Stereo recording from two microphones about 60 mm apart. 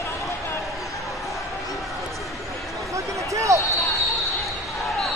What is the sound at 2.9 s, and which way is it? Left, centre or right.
Basketball bounce, right.